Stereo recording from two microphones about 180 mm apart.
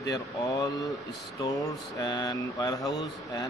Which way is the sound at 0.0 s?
20° left (ahead or behind).